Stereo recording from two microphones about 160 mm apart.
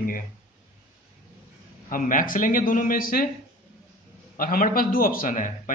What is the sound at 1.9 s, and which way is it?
A man's voice, 60° left (ahead or behind).